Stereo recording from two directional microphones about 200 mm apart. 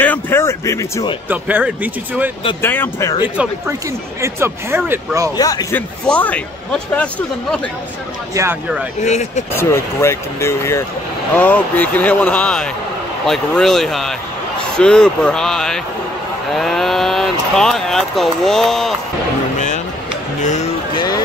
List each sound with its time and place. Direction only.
0.0 s a sound: 10° left (ahead or behind)
1.3 s speech: 10° right (ahead or behind)
2.6 s a man's voice: 10° left (ahead or behind)
4.2 s speech: 10° right (ahead or behind)
5.4 s a man's voice: 20° left (ahead or behind)
8.4 s speech: 10° right (ahead or behind)
9.0 s speech: 35° left (ahead or behind)
9.5 s a man's voice: 10° left (ahead or behind)
20.4 s music: 35° left (ahead or behind)